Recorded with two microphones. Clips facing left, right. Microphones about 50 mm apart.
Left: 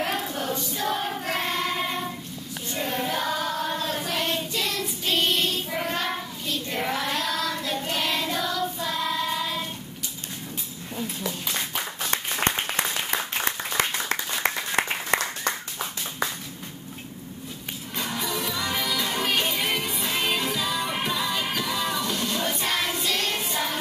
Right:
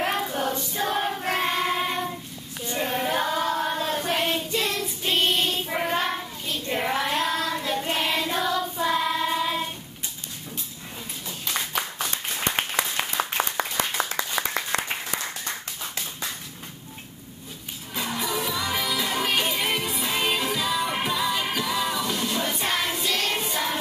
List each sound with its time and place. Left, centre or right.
0.0 s choir: centre
2.7 s child singing: centre
12.1 s applause: left
14.7 s applause: right
15.0 s clapping: left
17.9 s music: centre